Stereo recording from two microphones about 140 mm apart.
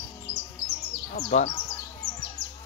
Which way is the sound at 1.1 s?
55° left (ahead or behind).